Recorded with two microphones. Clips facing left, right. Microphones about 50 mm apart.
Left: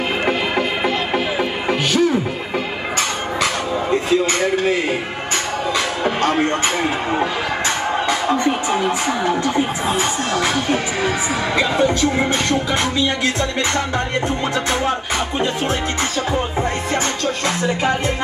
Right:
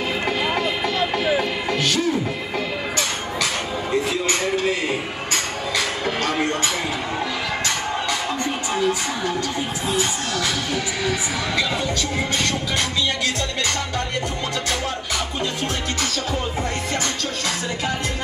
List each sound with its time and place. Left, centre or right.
0.2 s music: left
4.3 s a sound: left
6.0 s music: left